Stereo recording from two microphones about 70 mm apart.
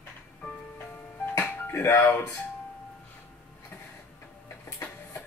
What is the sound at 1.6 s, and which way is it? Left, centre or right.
Speech, left.